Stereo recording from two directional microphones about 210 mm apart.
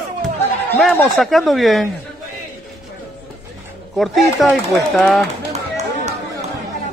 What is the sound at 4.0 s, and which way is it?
Speech, centre (ahead or behind).